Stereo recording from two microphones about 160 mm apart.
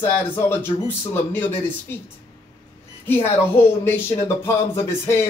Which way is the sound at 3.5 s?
15° left (ahead or behind).